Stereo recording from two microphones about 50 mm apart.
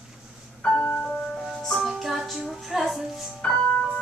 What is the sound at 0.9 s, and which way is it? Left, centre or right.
Music, left.